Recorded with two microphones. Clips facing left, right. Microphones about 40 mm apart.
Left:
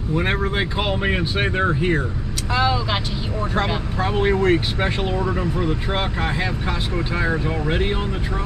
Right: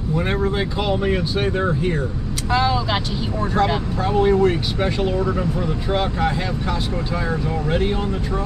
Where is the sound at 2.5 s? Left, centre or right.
Centre.